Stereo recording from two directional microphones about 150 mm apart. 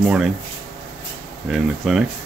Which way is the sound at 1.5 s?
5° right (ahead or behind).